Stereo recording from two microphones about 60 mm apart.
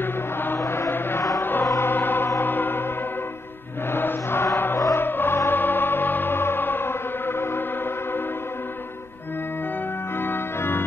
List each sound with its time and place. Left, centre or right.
0.0 s mantra: left
1.4 s music: left
3.9 s chant: left
4.6 s music: left
10.2 s organ: left